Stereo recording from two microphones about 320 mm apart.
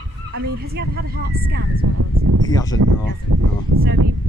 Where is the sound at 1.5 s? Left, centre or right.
Right.